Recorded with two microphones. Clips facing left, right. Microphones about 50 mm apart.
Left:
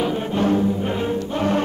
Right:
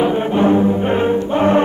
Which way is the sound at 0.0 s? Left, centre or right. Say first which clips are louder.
Right 6 dB; right.